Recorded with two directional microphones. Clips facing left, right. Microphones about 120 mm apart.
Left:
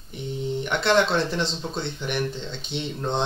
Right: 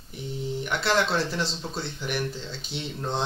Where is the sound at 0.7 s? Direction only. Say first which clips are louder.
Left 4 dB; 5° right (ahead or behind).